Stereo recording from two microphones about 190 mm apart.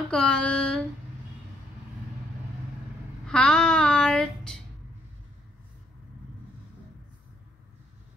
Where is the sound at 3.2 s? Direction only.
5° left (ahead or behind).